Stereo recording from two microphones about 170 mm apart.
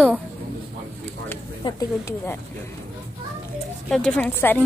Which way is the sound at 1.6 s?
30° left (ahead or behind).